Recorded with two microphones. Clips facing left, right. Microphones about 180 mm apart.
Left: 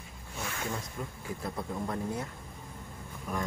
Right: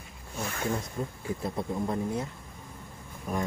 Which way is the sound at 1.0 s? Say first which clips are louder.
Right 5 dB; 30° right (ahead or behind).